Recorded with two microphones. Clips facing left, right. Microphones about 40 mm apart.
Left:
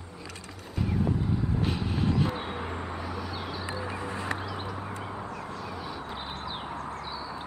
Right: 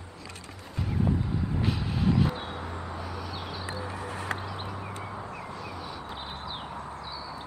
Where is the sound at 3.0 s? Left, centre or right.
Centre.